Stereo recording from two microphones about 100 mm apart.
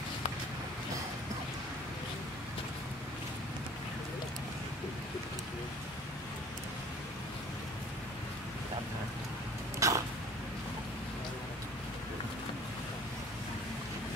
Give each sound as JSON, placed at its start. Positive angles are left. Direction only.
{"t": 9.8, "sound": "throat clearing", "side_deg": -30}